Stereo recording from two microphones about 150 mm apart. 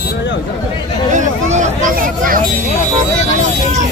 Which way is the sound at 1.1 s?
55° right (ahead or behind).